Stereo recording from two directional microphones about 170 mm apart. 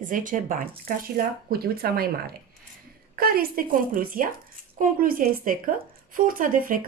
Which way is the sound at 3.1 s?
60° right (ahead or behind).